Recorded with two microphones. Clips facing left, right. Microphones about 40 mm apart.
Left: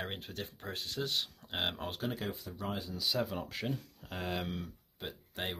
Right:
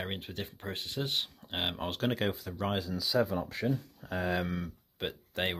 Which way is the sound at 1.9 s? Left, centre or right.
Right.